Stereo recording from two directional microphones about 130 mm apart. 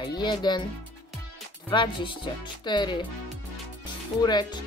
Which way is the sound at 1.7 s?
40° left (ahead or behind).